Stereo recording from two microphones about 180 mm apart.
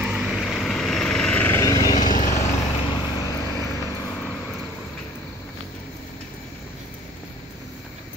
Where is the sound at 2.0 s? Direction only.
45° left (ahead or behind).